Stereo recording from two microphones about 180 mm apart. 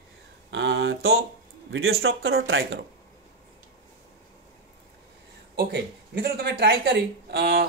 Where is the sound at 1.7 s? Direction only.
65° right (ahead or behind).